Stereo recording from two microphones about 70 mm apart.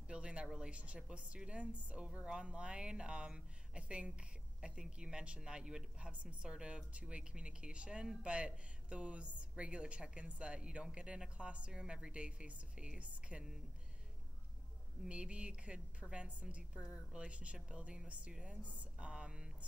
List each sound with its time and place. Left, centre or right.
0.1 s a woman's voice: centre
15.0 s a woman's voice: centre